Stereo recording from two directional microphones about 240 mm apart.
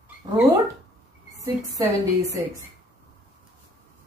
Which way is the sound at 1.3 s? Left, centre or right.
Centre.